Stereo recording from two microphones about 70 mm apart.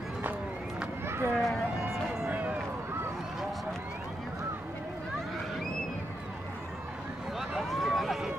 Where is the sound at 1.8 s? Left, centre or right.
Right.